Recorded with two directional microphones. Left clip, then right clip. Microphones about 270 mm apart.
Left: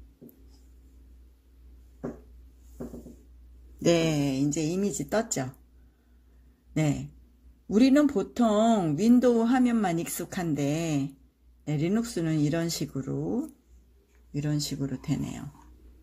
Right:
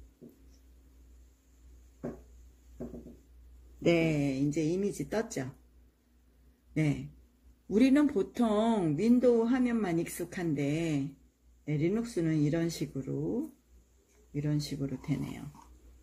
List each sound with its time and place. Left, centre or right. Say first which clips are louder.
3.8 s speech: left 3 dB; left
6.7 s a man's voice: left 4 dB; left
14.3 s speech: left 3 dB; left